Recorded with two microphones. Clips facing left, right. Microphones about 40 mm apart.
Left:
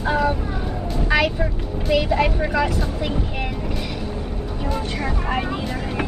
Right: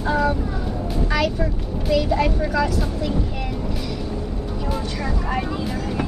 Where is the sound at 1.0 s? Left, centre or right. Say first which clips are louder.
Left 3 dB; left.